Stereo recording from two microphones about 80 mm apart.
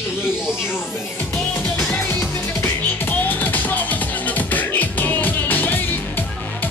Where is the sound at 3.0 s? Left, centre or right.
Left.